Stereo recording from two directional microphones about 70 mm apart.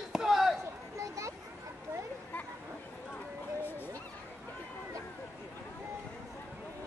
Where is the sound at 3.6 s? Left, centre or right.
Left.